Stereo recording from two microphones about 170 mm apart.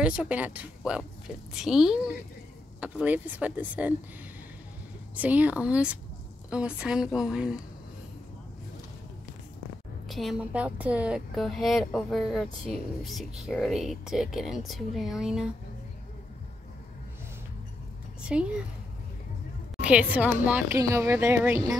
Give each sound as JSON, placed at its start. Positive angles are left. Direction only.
{"t": 0.0, "sound": "a woman's voice", "side_deg": -5}
{"t": 5.1, "sound": "a woman's voice", "side_deg": -10}
{"t": 10.0, "sound": "a woman's voice", "side_deg": 0}
{"t": 18.2, "sound": "a sound", "side_deg": -5}
{"t": 19.8, "sound": "speech", "side_deg": -10}